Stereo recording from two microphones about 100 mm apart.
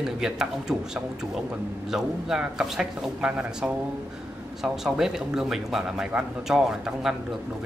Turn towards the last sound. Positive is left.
turn(degrees=-5)  # may be behind; listen again after turning